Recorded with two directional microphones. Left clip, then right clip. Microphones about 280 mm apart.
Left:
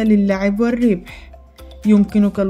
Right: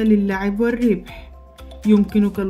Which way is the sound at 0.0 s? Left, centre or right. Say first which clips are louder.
Left 3 dB; centre.